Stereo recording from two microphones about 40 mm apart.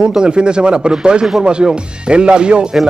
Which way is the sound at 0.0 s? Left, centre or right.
Right.